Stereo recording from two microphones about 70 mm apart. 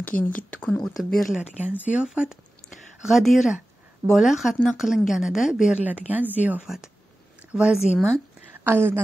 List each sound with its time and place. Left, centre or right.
0.0 s speech: left
0.8 s speech: centre
1.7 s a woman's voice: centre
2.0 s speech: centre
5.9 s a woman's voice: right
6.6 s speech: centre
8.6 s a woman's voice: right